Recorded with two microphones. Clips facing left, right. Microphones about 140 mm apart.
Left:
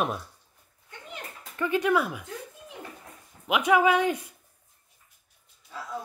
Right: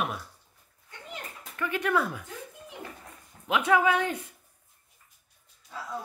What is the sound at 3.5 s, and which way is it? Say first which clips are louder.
Speech: left 2 dB; 15° left (ahead or behind).